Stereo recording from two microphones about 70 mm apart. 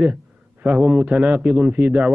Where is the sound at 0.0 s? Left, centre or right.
Centre.